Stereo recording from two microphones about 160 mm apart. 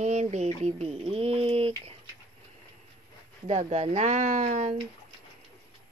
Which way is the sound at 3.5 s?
45° right (ahead or behind).